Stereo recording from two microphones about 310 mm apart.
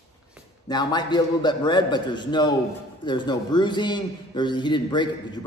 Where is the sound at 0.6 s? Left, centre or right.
Centre.